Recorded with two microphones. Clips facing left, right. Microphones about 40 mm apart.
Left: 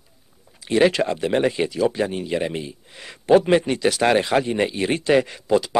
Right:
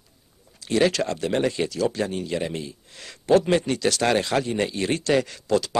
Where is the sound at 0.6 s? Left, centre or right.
Centre.